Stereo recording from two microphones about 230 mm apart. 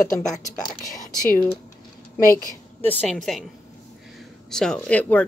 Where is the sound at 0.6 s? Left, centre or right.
Centre.